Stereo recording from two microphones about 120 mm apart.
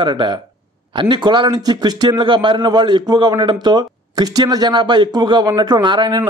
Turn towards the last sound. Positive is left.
turn(degrees=-40)  # may be behind; listen again after turning